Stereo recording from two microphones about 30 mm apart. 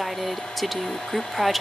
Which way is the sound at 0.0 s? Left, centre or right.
Centre.